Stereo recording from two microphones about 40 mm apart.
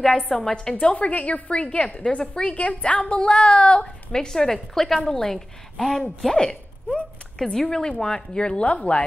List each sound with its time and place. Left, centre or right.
0.3 s a woman's voice: centre
0.6 s a woman's voice: left
2.5 s a woman's voice: left
3.0 s a woman's voice: left
4.3 s a woman's voice: centre
8.9 s a woman's voice: left